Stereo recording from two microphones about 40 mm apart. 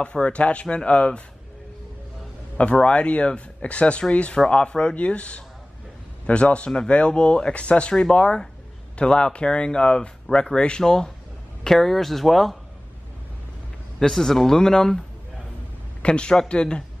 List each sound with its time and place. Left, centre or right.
0.0 s speech: left
2.5 s speech: left; by 12.5 s centre
13.9 s speech: centre
16.0 s speech: left